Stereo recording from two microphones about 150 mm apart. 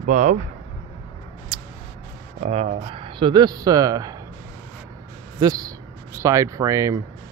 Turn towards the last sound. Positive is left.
turn(degrees=-20)  # may be behind; listen again after turning